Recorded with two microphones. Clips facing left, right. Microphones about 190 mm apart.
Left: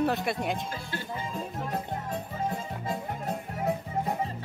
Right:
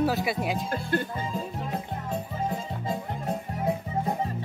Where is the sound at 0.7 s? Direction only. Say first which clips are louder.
Right 9 dB; 55° right (ahead or behind).